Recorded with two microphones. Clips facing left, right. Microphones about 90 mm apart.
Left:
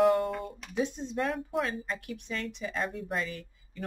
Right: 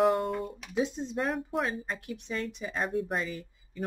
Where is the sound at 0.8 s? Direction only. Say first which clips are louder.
Even; 20° right (ahead or behind).